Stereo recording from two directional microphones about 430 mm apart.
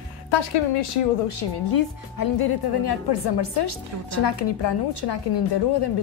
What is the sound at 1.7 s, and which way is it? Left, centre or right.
A woman's voice, left.